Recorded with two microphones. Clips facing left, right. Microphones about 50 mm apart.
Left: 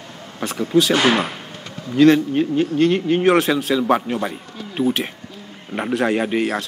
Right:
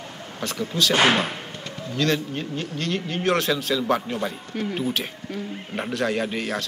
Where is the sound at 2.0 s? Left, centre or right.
Centre.